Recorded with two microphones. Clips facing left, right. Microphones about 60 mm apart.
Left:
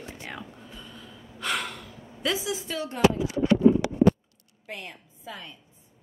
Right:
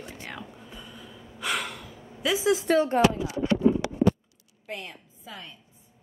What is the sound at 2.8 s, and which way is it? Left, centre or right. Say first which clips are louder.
Speech: right 10 dB; right.